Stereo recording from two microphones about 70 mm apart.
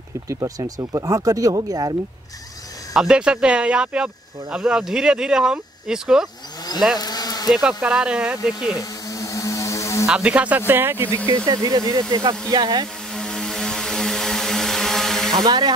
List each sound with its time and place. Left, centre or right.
0.3 s speech: right
2.9 s speech: centre
7.0 s insect: left
7.4 s speech: centre
8.7 s snake: left
10.0 s speech: centre
10.7 s speech: right
11.2 s speech: right
13.1 s vehicle: centre
15.3 s speech: right